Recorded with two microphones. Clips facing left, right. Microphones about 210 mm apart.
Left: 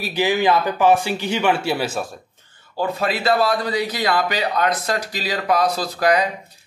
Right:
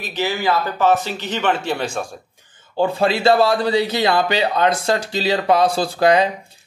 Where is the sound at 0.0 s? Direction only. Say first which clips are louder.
Left 3 dB; 10° left (ahead or behind).